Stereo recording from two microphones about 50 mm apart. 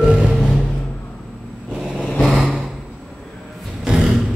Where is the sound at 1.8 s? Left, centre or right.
Centre.